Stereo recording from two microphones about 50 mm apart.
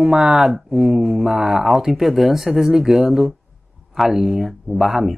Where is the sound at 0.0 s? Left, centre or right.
Centre.